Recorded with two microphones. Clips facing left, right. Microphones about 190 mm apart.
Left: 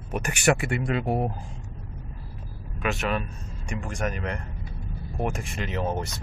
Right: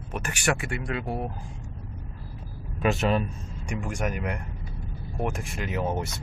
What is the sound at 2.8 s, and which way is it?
Speech, 35° right (ahead or behind).